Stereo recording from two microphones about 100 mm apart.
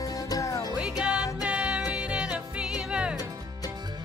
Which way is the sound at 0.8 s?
10° right (ahead or behind).